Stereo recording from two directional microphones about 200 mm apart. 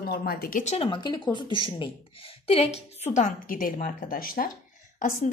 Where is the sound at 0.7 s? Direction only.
25° left (ahead or behind).